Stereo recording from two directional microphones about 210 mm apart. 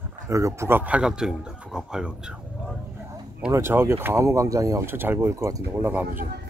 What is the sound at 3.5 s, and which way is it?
Speech, 10° right (ahead or behind).